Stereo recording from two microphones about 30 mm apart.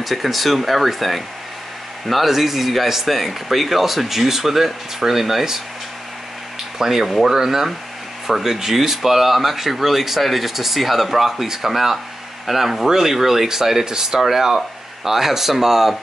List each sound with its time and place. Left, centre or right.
0.0 s speech: centre
6.8 s speech: centre
14.2 s speech: centre